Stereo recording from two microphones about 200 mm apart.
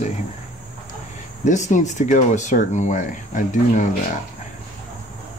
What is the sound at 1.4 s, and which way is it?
Speech, 35° left (ahead or behind).